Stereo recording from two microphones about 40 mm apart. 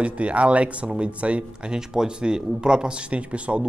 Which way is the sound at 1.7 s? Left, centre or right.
Centre.